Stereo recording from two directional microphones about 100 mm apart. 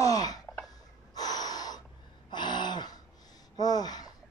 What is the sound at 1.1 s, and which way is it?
Gasp, 40° left (ahead or behind).